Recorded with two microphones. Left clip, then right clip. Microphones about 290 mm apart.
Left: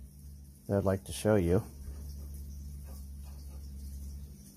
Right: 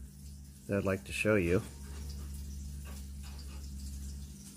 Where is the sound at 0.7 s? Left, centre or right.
Centre.